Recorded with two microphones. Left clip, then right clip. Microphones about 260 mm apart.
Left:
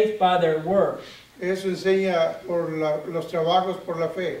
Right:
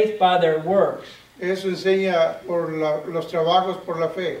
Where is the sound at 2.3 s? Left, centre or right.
Centre.